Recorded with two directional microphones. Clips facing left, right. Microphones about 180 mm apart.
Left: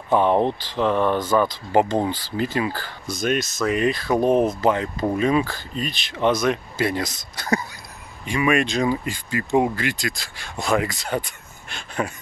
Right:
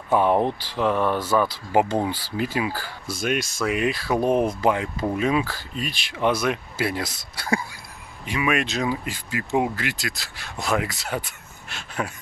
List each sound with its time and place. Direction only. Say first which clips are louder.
0.1 s speech: left 1 dB; 5° right (ahead or behind)